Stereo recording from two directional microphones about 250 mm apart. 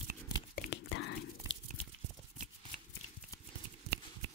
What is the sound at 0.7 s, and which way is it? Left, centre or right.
Whispering, left.